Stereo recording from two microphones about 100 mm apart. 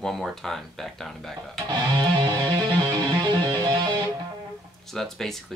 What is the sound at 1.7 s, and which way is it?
Music, 45° right (ahead or behind).